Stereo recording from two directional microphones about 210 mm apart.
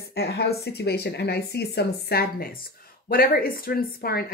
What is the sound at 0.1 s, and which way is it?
Speech, 50° left (ahead or behind).